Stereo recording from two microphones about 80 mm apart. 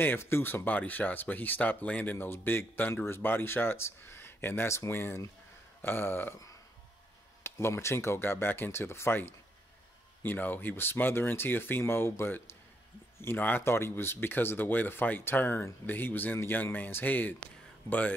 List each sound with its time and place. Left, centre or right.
0.0 s speech: left
7.4 s speech: left; by 18.1 s centre